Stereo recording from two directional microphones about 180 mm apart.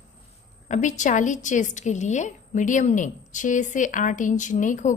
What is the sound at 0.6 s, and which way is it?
A woman's voice, 45° left (ahead or behind).